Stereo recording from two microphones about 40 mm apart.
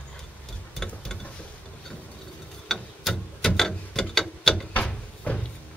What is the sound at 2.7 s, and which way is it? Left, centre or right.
Tick-tock, centre.